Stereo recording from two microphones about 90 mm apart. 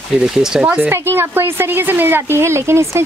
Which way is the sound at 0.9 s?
25° right (ahead or behind).